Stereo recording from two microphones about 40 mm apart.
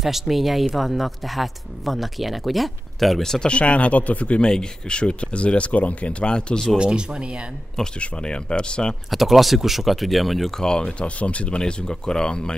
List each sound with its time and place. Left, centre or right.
0.0 s speech: centre
3.4 s speech: left
4.4 s speech: left
6.8 s speech: right
8.0 s speech: left
9.1 s speech: centre
10.6 s speech: left